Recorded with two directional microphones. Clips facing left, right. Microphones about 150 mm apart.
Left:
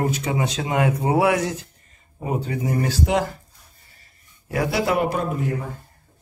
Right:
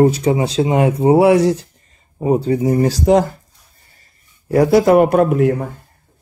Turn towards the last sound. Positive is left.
turn(degrees=-70)  # may be behind; listen again after turning